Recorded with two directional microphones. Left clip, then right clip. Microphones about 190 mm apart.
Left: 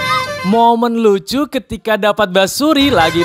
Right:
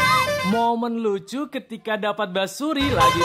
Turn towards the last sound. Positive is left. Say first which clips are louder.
# left 7 dB
turn(degrees=45)  # may be behind; listen again after turning